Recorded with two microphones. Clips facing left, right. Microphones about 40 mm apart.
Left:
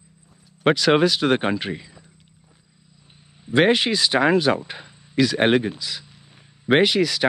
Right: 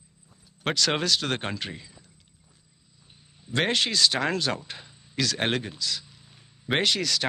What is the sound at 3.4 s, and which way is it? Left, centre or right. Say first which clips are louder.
Speech: left 8 dB; centre.